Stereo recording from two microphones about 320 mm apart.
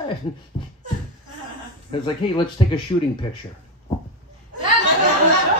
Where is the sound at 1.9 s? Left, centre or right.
Centre.